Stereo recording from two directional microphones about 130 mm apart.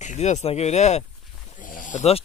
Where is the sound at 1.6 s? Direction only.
85° left.